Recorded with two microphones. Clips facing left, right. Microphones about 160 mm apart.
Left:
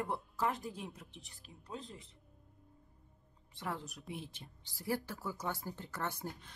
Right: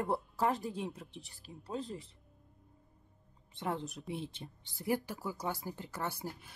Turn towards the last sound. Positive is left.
turn(degrees=-10)  # may be behind; listen again after turning